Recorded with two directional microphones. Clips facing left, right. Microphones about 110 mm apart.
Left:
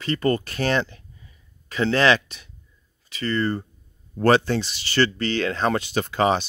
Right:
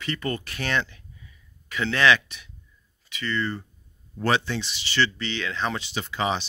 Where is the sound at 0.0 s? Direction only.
35° left (ahead or behind).